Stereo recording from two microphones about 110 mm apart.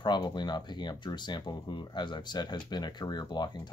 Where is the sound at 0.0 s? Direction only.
40° left (ahead or behind).